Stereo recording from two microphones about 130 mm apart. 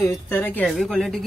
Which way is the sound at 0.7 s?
Centre (ahead or behind).